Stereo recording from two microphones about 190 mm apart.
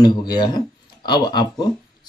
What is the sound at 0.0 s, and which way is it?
Speech, 20° left (ahead or behind).